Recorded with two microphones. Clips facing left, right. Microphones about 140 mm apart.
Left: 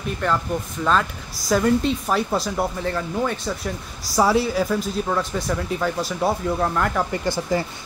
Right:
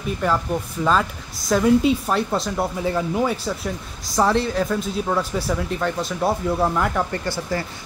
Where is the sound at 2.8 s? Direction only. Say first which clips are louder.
Right 3 dB; 15° right (ahead or behind).